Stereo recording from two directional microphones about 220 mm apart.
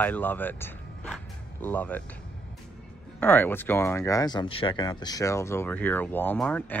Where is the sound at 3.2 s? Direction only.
10° left (ahead or behind).